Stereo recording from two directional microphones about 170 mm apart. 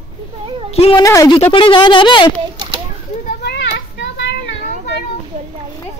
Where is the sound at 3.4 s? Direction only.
85° left.